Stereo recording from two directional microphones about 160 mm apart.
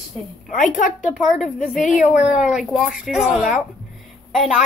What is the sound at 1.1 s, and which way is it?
Speech, centre (ahead or behind).